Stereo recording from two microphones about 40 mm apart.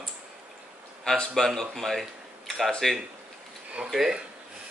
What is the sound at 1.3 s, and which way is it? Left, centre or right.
A man's voice, centre.